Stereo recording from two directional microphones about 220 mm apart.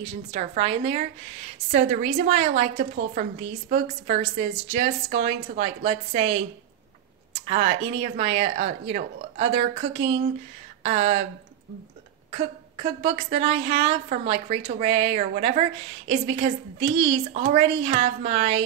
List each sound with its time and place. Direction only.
0.3 s a woman's voice: 30° right (ahead or behind)
7.4 s a woman's voice: 30° right (ahead or behind)
12.3 s a woman's voice: 30° right (ahead or behind)